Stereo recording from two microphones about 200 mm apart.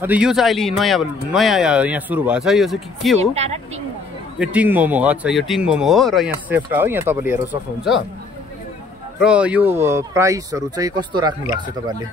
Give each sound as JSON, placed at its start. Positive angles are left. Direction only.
{"t": 0.0, "sound": "speech", "side_deg": -5}
{"t": 3.2, "sound": "speech", "side_deg": -35}
{"t": 4.4, "sound": "speech", "side_deg": -5}
{"t": 6.5, "sound": "speech", "side_deg": -10}
{"t": 9.2, "sound": "speech", "side_deg": -5}